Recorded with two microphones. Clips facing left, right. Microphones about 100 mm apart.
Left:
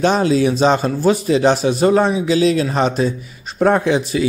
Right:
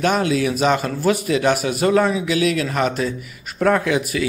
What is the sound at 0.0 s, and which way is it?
A man's voice, 30° left (ahead or behind).